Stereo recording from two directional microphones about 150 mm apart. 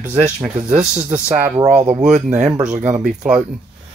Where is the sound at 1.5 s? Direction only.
45° right (ahead or behind).